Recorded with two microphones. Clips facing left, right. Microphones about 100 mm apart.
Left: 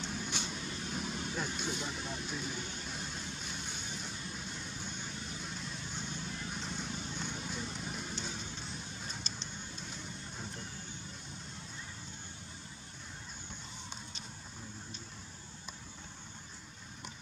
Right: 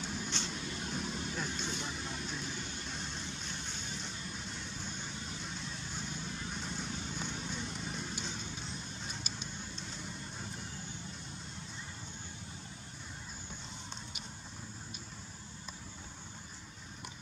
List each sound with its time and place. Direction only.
0.0 s vehicle: centre (ahead or behind)
0.3 s vehicle: 10° left (ahead or behind)